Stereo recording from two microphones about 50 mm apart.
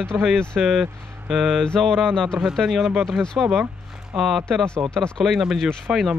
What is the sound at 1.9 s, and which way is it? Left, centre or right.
Speech, centre.